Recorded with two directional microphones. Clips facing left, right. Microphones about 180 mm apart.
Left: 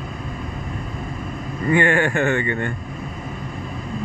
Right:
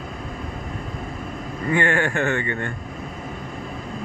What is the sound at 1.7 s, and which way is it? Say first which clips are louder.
Speech: left 3 dB; 15° left (ahead or behind).